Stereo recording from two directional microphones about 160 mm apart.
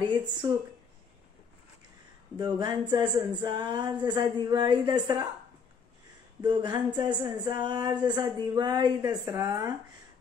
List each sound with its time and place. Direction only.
0.0 s speech: 30° right (ahead or behind)
2.3 s speech: 25° right (ahead or behind)
6.4 s speech: 25° right (ahead or behind)